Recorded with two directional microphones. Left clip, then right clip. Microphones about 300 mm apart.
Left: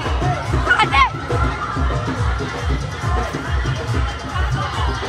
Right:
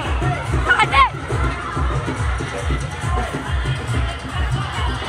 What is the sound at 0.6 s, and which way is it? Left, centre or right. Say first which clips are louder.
Music: even; centre.